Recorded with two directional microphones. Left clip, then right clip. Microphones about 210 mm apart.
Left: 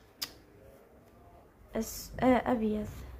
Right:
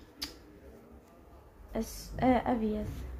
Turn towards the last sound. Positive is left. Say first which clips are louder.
# left 1 dB
turn(degrees=15)  # may be behind; listen again after turning